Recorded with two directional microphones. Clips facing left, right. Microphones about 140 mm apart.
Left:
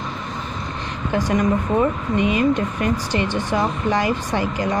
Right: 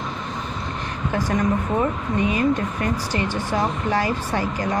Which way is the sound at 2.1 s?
20° left (ahead or behind).